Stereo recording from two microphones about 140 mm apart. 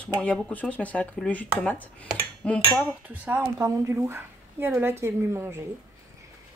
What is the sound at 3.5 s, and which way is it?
Speech, 20° right (ahead or behind).